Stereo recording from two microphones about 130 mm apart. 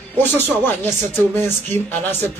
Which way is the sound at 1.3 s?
15° left (ahead or behind).